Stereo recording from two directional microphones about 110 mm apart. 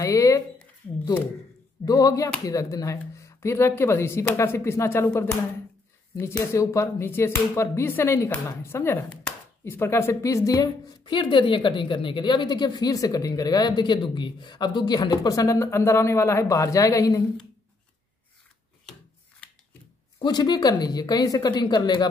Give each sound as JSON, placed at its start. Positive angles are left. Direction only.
{"t": 0.0, "sound": "a sound", "side_deg": 30}
{"t": 1.9, "sound": "a woman's voice", "side_deg": 35}
{"t": 6.4, "sound": "speech", "side_deg": 25}
{"t": 11.1, "sound": "a woman's voice", "side_deg": 50}
{"t": 20.2, "sound": "a woman's voice", "side_deg": 40}